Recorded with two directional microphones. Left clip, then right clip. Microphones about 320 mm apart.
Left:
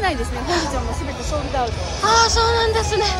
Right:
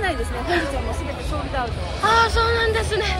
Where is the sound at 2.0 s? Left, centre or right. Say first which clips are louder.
Left 2 dB; centre.